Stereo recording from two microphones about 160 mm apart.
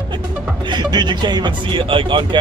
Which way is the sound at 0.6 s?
25° right (ahead or behind).